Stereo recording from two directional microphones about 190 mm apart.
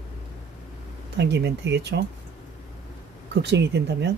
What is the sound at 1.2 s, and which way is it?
Speech, 65° right (ahead or behind).